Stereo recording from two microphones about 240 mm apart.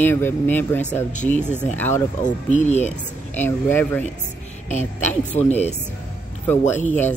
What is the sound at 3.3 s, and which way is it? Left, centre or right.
Speech, centre.